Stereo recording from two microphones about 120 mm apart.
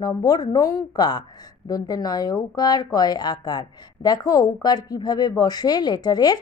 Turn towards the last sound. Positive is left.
turn(degrees=35)  # may be behind; listen again after turning